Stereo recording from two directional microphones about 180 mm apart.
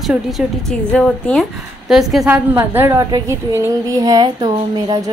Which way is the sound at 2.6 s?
15° right (ahead or behind).